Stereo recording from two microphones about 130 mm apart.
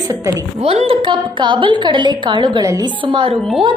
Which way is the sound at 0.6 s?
55° right (ahead or behind).